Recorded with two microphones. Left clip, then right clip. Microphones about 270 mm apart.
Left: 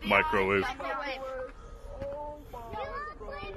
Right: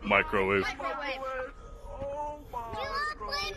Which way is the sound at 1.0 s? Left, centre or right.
Centre.